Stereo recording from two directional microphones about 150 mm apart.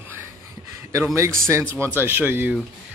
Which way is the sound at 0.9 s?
20° right (ahead or behind).